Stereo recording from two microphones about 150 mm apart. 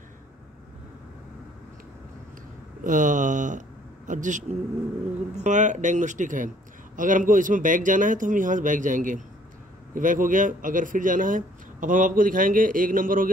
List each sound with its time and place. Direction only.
2.8 s speech: 60° right (ahead or behind)